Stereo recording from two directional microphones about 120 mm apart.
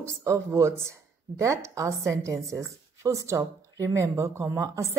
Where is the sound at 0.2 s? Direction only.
25° right (ahead or behind).